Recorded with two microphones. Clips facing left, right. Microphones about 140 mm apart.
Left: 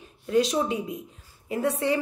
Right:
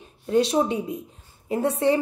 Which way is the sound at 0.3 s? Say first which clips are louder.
Right 3 dB; 30° right (ahead or behind).